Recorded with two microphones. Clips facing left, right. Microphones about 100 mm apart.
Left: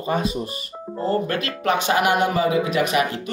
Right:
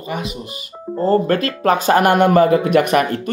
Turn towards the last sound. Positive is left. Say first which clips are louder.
# right 6 dB
turn(degrees=-55)  # may be behind; listen again after turning